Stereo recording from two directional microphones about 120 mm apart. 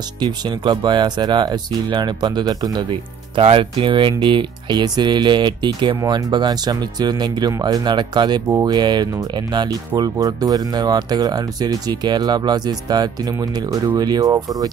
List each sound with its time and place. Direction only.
0.2 s speech: 40° right (ahead or behind)